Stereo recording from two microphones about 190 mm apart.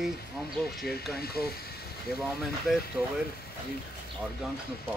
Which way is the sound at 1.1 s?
55° left (ahead or behind).